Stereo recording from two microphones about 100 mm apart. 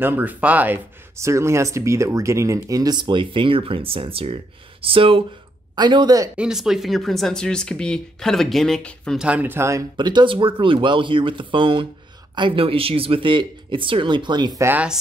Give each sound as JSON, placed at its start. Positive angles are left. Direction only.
{"t": 0.0, "sound": "speech", "side_deg": -20}
{"t": 1.1, "sound": "speech", "side_deg": -30}
{"t": 5.8, "sound": "speech", "side_deg": -50}
{"t": 6.3, "sound": "speech", "side_deg": -5}
{"t": 9.2, "sound": "speech", "side_deg": -15}
{"t": 9.9, "sound": "speech", "side_deg": -50}